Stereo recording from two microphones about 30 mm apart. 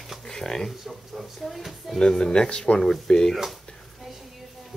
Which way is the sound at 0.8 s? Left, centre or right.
Centre.